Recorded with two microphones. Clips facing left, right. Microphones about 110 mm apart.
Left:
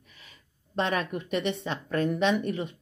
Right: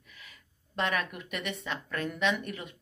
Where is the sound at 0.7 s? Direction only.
30° left (ahead or behind).